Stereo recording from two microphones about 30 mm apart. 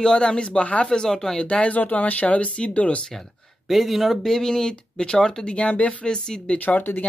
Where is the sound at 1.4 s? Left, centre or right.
Left.